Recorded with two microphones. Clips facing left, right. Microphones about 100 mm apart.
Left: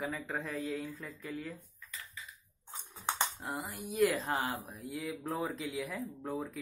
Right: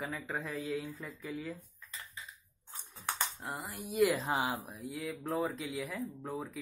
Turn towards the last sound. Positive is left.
turn(degrees=0)  # may be behind; listen again after turning